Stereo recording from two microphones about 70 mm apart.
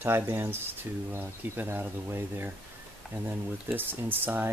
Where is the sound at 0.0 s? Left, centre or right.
Right.